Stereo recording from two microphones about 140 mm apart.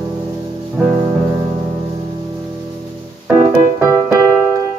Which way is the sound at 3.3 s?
15° right (ahead or behind).